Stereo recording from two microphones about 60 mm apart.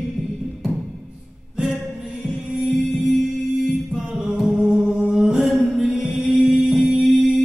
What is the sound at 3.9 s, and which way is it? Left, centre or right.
Music, centre.